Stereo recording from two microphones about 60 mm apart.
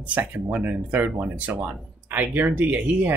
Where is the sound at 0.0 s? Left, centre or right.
Right.